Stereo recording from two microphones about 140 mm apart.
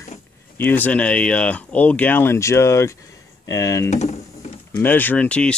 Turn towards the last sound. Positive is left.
turn(degrees=10)  # may be behind; listen again after turning